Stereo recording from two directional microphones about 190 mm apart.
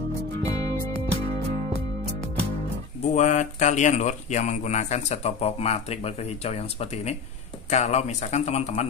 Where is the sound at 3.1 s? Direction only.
40° left (ahead or behind).